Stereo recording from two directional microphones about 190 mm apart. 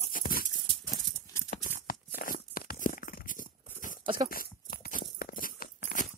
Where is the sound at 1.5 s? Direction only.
45° left (ahead or behind).